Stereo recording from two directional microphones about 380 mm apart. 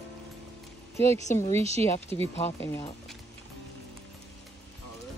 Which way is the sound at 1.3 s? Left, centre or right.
Centre.